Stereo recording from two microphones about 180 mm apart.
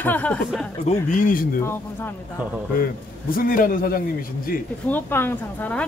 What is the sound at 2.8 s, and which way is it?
A man's voice, 55° left (ahead or behind).